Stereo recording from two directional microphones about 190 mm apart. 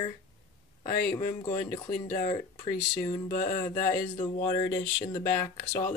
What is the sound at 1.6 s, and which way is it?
Speech, 40° left (ahead or behind).